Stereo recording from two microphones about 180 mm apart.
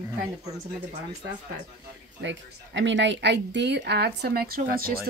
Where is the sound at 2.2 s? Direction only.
90° right.